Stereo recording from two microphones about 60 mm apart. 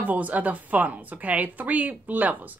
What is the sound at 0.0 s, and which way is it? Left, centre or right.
Speech, right.